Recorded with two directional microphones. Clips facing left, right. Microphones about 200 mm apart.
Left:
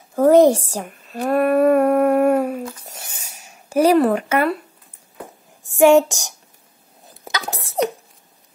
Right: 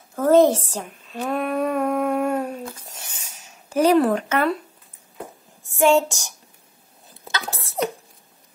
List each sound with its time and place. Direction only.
0.1 s a woman's voice: 15° left (ahead or behind)
0.8 s female singing: 5° left (ahead or behind)
1.3 s humming: 55° left (ahead or behind)
2.2 s a sound: 5° left (ahead or behind)
5.8 s a woman's voice: 15° left (ahead or behind)
7.2 s sneeze: 15° left (ahead or behind)